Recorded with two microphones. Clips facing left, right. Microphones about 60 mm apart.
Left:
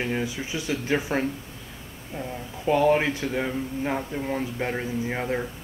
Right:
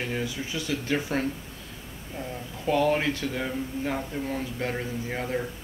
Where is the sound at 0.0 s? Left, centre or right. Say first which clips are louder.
Left 3 dB; centre.